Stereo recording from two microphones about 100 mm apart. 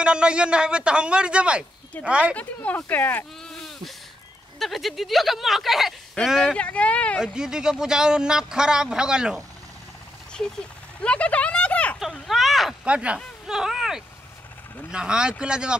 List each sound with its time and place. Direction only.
0.0 s speech: 10° right (ahead or behind)
2.3 s speech: 15° left (ahead or behind)
3.4 s sheep: centre (ahead or behind)
4.6 s speech: centre (ahead or behind)
6.5 s speech: 10° left (ahead or behind)
7.3 s speech: 5° right (ahead or behind)
11.0 s a sound: 10° left (ahead or behind)
12.0 s speech: centre (ahead or behind)
12.8 s speech: 10° right (ahead or behind)